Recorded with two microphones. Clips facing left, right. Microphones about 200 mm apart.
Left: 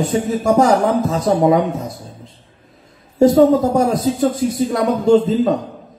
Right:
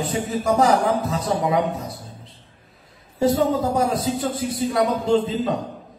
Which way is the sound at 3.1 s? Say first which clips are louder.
Left 8 dB; 45° left (ahead or behind).